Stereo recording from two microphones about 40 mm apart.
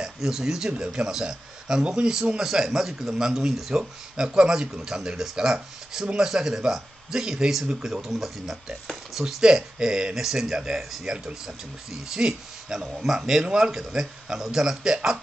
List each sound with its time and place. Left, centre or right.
0.0 s speech: centre
9.4 s speech: centre